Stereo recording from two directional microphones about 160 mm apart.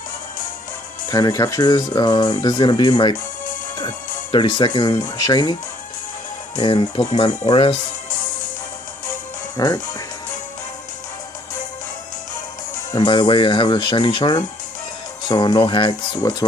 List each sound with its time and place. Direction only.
1.0 s speech: 20° left (ahead or behind)
6.6 s speech: 30° left (ahead or behind)
9.6 s speech: 20° left (ahead or behind)
12.9 s speech: 30° left (ahead or behind)